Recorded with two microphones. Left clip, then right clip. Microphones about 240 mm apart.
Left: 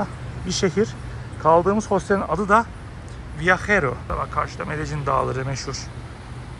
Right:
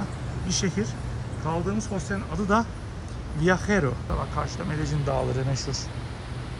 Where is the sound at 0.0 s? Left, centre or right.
Centre.